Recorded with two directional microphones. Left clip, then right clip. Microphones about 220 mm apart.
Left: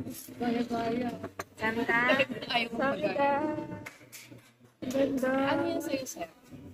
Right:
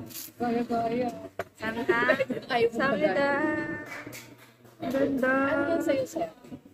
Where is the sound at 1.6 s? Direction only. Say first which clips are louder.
Right 1 dB; 20° left (ahead or behind).